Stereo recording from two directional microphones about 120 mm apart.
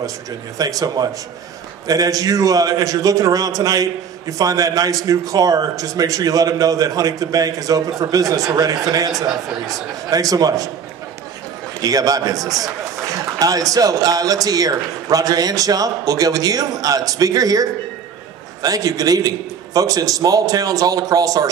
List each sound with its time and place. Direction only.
0.6 s a man's voice: 30° right (ahead or behind)
11.8 s a man's voice: 30° right (ahead or behind)